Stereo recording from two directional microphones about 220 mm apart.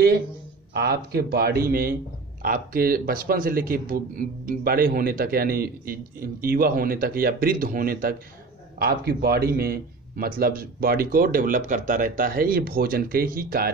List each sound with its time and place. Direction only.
0.7 s speech: 45° right (ahead or behind)